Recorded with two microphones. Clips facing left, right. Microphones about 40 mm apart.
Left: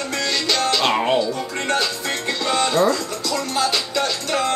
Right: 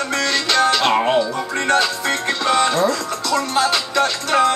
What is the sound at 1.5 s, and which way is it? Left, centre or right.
Music, right.